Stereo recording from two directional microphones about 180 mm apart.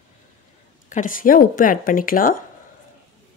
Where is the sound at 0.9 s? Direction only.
50° left (ahead or behind).